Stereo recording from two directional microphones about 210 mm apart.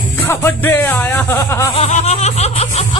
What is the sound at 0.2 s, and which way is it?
Speech, 10° left (ahead or behind).